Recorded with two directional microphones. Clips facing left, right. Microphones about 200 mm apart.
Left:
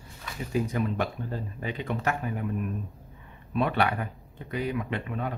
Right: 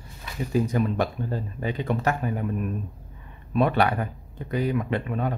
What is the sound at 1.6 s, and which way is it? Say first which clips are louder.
Speech: right 4 dB; 40° right (ahead or behind).